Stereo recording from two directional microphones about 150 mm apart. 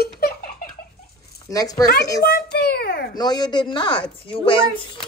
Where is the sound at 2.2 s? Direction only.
90° left.